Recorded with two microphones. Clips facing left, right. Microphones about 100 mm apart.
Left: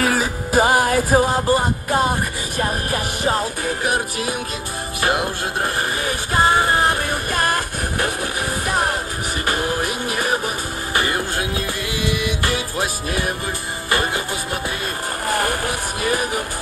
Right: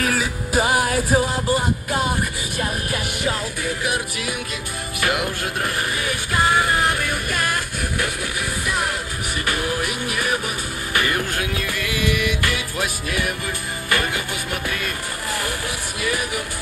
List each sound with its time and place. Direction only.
0.0 s music: 35° left (ahead or behind)
15.2 s vehicle: 45° left (ahead or behind)